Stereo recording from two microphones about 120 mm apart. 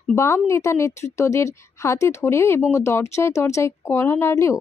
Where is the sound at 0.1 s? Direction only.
25° left (ahead or behind).